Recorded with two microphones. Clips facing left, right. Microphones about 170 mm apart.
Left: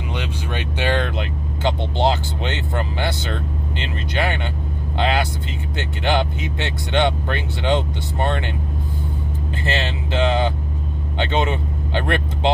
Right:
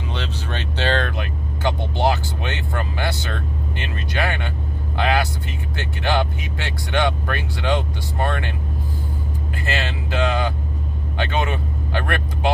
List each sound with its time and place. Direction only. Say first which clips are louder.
0.1 s speech: left 2 dB; 15° left (ahead or behind)
9.7 s speech: left 2 dB; 25° left (ahead or behind)